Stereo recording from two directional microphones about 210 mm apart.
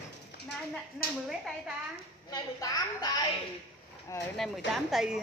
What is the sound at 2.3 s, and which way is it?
Speech, 20° left (ahead or behind).